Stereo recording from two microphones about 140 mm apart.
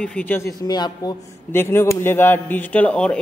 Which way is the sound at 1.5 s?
15° left (ahead or behind).